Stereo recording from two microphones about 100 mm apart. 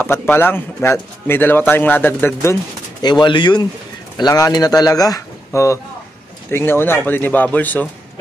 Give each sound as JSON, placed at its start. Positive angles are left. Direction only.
{"t": 0.0, "sound": "speech", "side_deg": 20}
{"t": 3.0, "sound": "speech", "side_deg": 45}
{"t": 4.2, "sound": "speech", "side_deg": 35}